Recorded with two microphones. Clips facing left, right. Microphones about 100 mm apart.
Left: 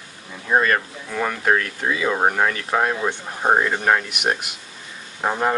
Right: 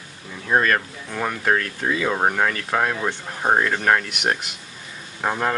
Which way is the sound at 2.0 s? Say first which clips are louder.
Left 2 dB; 15° left (ahead or behind).